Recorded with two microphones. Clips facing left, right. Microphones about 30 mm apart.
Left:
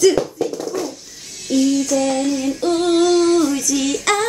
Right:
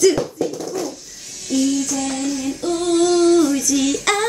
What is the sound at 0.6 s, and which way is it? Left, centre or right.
Bird, centre.